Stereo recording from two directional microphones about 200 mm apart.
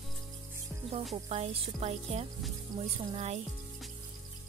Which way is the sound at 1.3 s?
30° right (ahead or behind).